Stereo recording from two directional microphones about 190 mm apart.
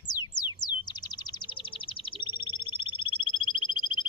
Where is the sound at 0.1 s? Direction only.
20° left (ahead or behind).